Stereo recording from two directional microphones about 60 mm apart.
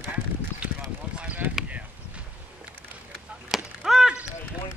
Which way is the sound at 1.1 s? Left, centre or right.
Right.